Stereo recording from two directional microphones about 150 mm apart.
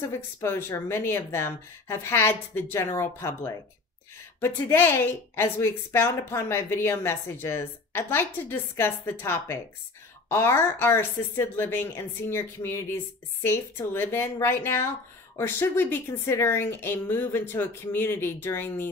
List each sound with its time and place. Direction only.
0.4 s a woman's voice: 15° left (ahead or behind)
4.6 s a woman's voice: 15° left (ahead or behind)